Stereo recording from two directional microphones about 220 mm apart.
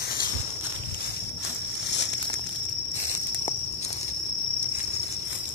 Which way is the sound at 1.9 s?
50° left (ahead or behind).